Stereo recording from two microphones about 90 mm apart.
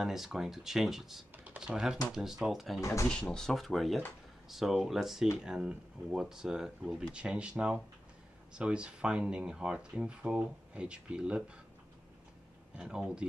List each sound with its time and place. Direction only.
0.0 s speech: 5° right (ahead or behind)
1.3 s computer keyboard: 15° right (ahead or behind)
1.6 s speech: 5° right (ahead or behind)
2.8 s speech: 35° left (ahead or behind)
3.1 s speech: 10° left (ahead or behind); by 11.5 s 10° right (ahead or behind)
12.7 s speech: 10° right (ahead or behind)